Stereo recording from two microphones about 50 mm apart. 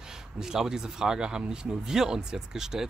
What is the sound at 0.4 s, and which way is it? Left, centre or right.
Speech, centre.